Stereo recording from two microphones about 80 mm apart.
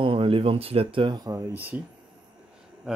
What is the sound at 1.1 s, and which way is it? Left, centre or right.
Speech, right.